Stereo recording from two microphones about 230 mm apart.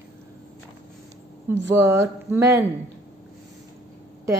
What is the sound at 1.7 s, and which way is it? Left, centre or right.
Speech, centre.